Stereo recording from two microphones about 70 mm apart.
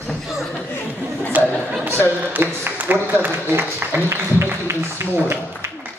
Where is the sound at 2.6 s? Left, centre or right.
Right.